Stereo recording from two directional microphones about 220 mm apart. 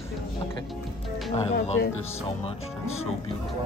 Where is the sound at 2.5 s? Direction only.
30° left (ahead or behind).